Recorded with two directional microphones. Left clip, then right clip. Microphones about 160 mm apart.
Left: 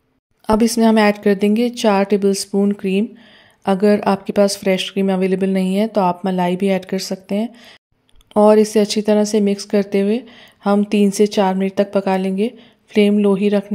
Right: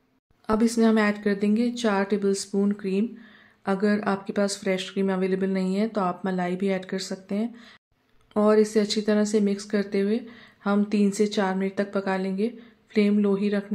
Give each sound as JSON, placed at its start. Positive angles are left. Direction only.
{"t": 0.5, "sound": "speech", "side_deg": 45}